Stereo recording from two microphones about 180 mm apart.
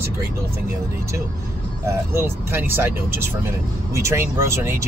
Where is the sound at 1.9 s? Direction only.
15° right (ahead or behind).